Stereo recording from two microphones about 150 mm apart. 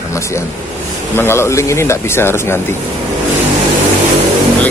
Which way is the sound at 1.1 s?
15° left (ahead or behind).